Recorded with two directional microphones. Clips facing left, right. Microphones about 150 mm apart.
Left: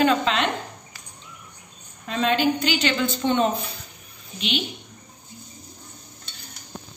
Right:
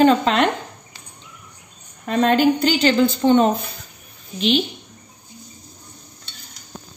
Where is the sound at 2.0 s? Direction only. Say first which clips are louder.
Right 6 dB; 50° right (ahead or behind).